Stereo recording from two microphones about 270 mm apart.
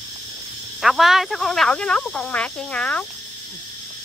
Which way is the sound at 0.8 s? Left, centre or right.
Centre.